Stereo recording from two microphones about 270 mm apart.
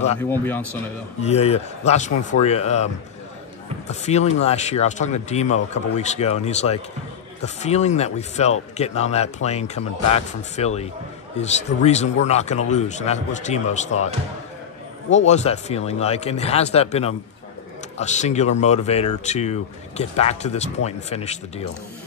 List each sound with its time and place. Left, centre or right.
1.2 s speech: left
15.0 s speech: left